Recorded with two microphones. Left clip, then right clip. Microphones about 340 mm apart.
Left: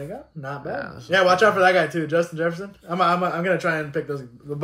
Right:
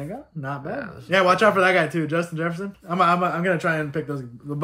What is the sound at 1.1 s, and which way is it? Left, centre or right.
Speech, right.